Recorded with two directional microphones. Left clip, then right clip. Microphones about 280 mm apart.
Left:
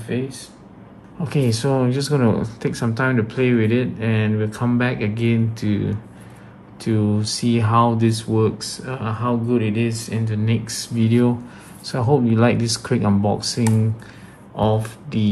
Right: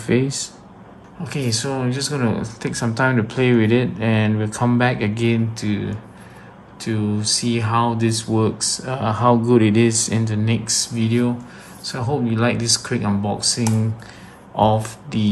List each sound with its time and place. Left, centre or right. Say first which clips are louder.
0.0 s speech: right 6 dB; right
1.2 s speech: left 2 dB; centre